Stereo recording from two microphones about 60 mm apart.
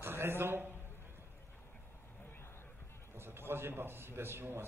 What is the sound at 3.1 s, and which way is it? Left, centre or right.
A man's voice, right.